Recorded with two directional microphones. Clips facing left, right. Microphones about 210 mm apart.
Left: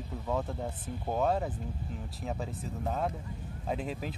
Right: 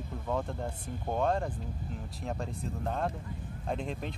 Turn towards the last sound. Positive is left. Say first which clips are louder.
# even
turn(degrees=5)  # may be behind; listen again after turning